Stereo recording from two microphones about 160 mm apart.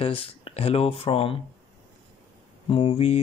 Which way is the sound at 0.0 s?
35° left (ahead or behind).